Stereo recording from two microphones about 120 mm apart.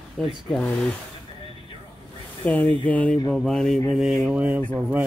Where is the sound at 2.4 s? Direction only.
15° left (ahead or behind).